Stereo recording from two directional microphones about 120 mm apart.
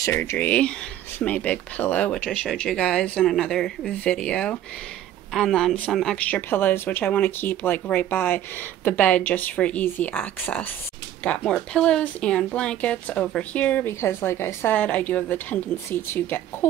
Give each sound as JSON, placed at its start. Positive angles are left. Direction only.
{"t": 0.0, "sound": "speech", "side_deg": 20}